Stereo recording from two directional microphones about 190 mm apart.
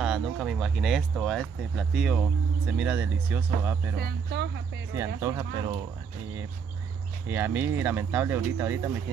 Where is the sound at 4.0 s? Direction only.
60° right (ahead or behind).